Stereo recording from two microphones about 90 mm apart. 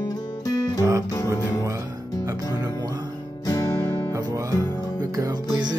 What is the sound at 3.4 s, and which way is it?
Guitar, 40° left (ahead or behind).